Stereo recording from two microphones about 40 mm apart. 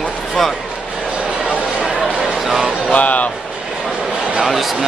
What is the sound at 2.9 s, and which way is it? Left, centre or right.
Speech, left.